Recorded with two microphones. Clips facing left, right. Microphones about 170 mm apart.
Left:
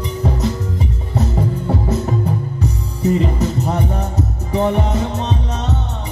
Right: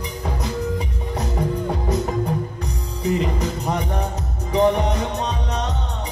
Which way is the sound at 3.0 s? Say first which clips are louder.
Left 5 dB; 15° right (ahead or behind).